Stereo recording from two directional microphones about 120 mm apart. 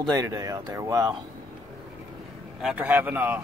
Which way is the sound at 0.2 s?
30° right (ahead or behind).